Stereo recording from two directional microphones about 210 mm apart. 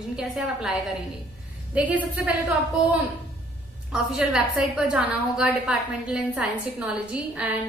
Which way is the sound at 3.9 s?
Centre (ahead or behind).